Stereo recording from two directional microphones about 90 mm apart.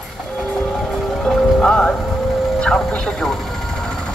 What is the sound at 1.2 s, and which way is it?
Speech, 10° left (ahead or behind).